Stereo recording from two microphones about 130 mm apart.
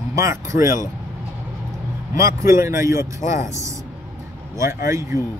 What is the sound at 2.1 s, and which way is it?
Speech, 25° right (ahead or behind).